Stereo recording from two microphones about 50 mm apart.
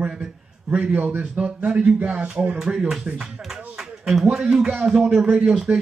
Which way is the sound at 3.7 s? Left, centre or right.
Centre.